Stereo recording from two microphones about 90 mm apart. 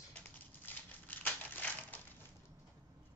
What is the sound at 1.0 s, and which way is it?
Crumpling, 20° left (ahead or behind).